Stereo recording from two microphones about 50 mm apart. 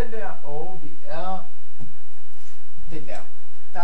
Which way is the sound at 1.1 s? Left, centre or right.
Centre.